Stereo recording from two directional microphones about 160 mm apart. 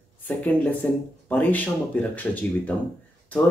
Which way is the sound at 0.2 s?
10° left (ahead or behind).